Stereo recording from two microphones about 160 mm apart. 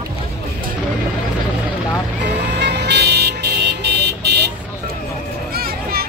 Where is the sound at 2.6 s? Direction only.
90° right.